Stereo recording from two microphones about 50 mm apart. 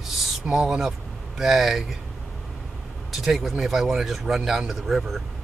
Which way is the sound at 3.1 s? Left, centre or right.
Centre.